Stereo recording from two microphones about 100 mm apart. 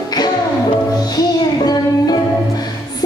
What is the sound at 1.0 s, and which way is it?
Music, 40° left (ahead or behind).